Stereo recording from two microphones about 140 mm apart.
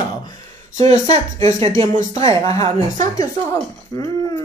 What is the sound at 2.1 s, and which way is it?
Speech, 25° left (ahead or behind).